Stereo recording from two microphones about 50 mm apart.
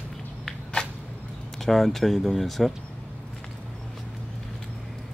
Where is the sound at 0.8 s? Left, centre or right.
Centre.